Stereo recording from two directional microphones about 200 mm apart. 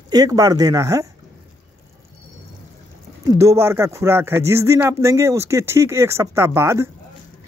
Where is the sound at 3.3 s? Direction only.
15° right (ahead or behind).